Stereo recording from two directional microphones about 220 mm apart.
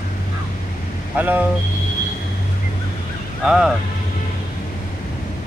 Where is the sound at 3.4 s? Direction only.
Centre (ahead or behind).